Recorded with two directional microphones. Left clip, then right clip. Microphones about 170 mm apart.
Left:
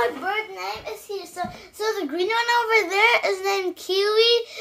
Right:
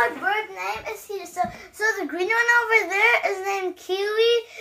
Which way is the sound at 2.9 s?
60° left (ahead or behind).